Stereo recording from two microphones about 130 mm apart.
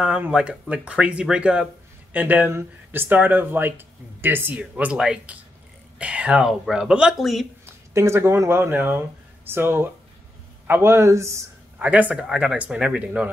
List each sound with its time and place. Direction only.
0.0 s speech: 10° right (ahead or behind)
7.6 s a man's voice: 20° right (ahead or behind)
11.8 s speech: 10° right (ahead or behind)